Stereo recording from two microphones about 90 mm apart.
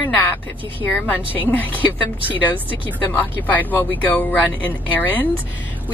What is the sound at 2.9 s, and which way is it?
Speech, 20° left (ahead or behind).